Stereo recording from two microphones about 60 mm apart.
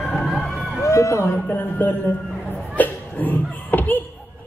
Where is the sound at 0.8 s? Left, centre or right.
Left.